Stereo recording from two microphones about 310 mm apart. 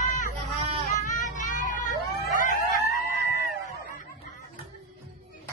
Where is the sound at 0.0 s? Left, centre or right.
Left.